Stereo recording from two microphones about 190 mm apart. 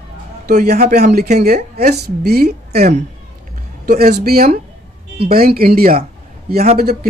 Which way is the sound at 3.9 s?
55° right (ahead or behind).